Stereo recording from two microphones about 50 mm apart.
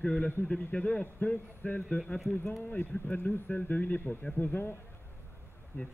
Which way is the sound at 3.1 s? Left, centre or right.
Left.